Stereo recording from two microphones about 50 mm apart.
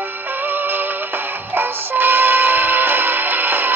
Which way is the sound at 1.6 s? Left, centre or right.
Right.